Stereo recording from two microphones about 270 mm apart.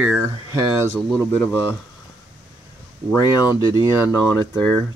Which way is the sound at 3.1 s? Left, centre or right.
Centre.